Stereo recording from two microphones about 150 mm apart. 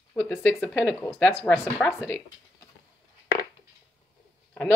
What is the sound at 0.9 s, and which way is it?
A woman's voice, 15° left (ahead or behind).